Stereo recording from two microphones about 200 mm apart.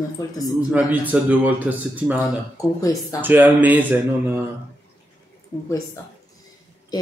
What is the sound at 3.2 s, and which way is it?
A man's voice, 10° right (ahead or behind).